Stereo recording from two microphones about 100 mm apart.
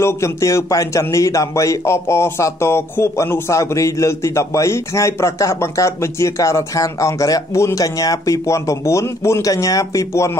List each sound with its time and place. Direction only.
0.0 s a man's voice: 30° left (ahead or behind)